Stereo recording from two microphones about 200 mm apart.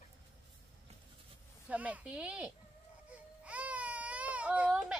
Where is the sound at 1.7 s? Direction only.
5° right (ahead or behind).